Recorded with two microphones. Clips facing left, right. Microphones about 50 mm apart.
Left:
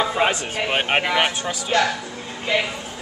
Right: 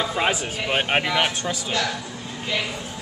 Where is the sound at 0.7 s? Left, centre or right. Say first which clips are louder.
Left 1 dB; centre.